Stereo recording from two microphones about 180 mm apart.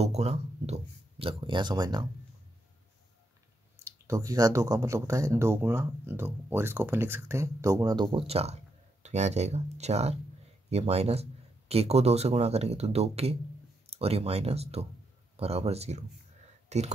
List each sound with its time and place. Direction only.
0.0 s speech: 35° right (ahead or behind)
3.8 s speech: 20° right (ahead or behind); by 16.0 s 35° right (ahead or behind)
16.6 s a sound: 40° right (ahead or behind)